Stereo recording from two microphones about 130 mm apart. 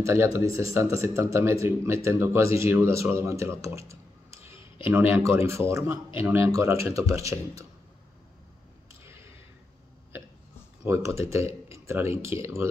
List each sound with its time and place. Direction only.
0.0 s a man's voice: 20° right (ahead or behind)
10.9 s a man's voice: 20° right (ahead or behind)